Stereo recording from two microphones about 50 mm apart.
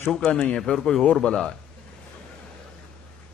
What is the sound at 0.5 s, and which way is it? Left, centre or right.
A man's voice, centre.